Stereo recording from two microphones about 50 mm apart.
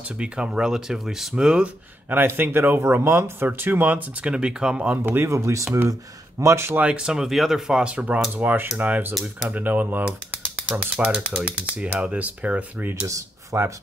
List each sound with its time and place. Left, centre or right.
0.2 s speech: centre
1.3 s speech: centre
2.0 s speech: right
4.3 s speech: right
4.9 s speech: right
5.3 s speech: right
6.4 s speech: right
6.8 s speech: centre
8.4 s speech: right
8.7 s speech: right
11.0 s speech: right
13.0 s speech: right